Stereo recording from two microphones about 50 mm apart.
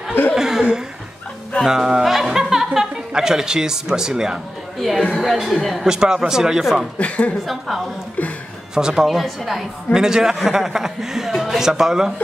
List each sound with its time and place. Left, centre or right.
0.4 s chuckle: centre
1.7 s music: centre
3.1 s a man's voice: centre
4.7 s speech: centre
5.9 s a man's voice: centre
7.0 s a woman's voice: left
7.4 s speech: centre
8.2 s a sound: left
8.7 s speech: centre
9.9 s a man's voice: centre